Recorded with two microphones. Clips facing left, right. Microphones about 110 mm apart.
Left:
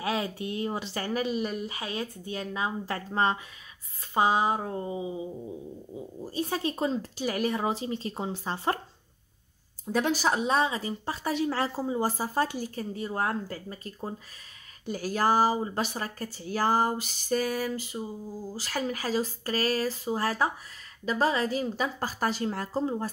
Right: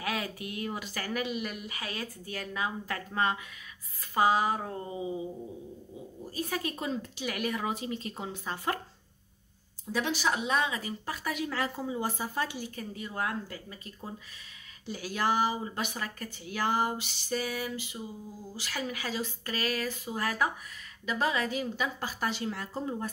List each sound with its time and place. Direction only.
0.0 s a woman's voice: 30° left (ahead or behind)
6.2 s speech: 30° left (ahead or behind)
9.9 s speech: 45° left (ahead or behind)